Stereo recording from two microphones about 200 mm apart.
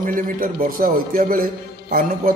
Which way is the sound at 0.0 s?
45° right (ahead or behind).